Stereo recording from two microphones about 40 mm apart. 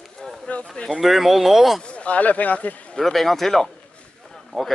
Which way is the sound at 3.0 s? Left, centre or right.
Centre.